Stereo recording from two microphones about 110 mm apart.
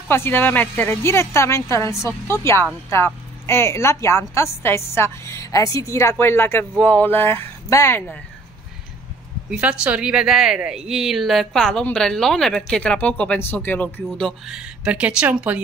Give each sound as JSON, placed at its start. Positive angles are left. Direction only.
{"t": 0.1, "sound": "a woman's voice", "side_deg": 20}
{"t": 9.5, "sound": "speech", "side_deg": -10}
{"t": 14.4, "sound": "speech", "side_deg": -5}